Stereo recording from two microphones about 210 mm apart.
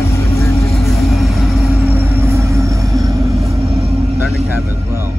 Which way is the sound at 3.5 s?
30° right (ahead or behind).